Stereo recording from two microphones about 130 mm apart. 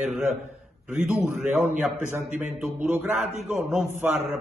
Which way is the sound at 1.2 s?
15° right (ahead or behind).